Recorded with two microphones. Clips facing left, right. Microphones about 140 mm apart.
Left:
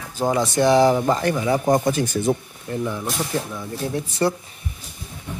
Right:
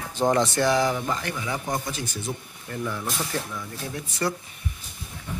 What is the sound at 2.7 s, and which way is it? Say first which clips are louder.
Speech: left 5 dB; 20° left (ahead or behind).